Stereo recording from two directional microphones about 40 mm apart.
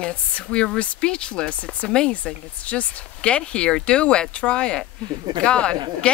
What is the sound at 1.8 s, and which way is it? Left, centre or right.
Speech, left.